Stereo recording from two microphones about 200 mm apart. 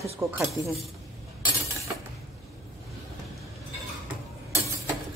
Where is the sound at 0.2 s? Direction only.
10° right (ahead or behind).